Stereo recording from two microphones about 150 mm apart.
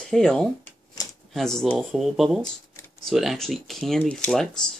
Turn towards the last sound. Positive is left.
turn(degrees=5)  # may be behind; listen again after turning